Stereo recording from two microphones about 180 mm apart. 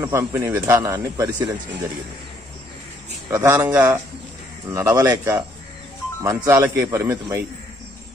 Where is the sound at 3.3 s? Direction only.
15° right (ahead or behind).